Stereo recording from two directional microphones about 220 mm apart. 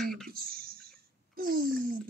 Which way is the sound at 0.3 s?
45° right (ahead or behind).